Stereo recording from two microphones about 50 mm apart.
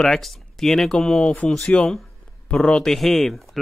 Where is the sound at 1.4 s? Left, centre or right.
Centre.